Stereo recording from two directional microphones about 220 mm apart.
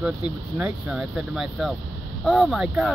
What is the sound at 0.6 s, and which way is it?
Speech, 5° right (ahead or behind).